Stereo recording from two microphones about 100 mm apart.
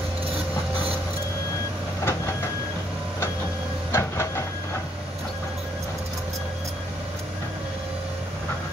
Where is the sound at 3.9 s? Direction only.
30° left (ahead or behind).